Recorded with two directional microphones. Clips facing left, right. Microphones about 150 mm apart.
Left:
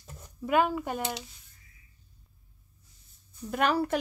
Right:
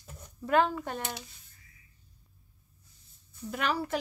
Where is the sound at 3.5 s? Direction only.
55° left (ahead or behind).